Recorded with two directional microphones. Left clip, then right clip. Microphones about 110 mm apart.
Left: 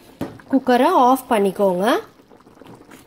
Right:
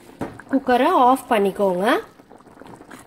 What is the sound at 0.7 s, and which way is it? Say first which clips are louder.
Speech: left 1 dB; 35° left (ahead or behind).